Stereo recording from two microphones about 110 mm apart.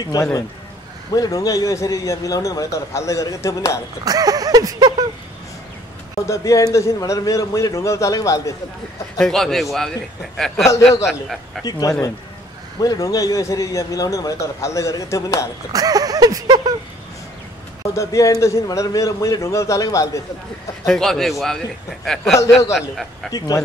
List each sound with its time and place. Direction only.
0.0 s a man's voice: 30° left (ahead or behind)
4.0 s speech: 35° right (ahead or behind)
6.2 s a man's voice: 30° left (ahead or behind)
9.2 s a man's voice: 5° left (ahead or behind)
12.8 s a man's voice: 35° left (ahead or behind)
15.7 s speech: 35° right (ahead or behind)
17.9 s a man's voice: 30° left (ahead or behind)
20.8 s a man's voice: 5° left (ahead or behind)
23.3 s a man's voice: 35° left (ahead or behind)